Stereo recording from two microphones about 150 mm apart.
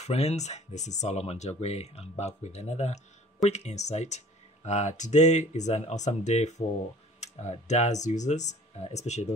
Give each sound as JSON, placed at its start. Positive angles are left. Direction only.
{"t": 0.0, "sound": "speech", "side_deg": 45}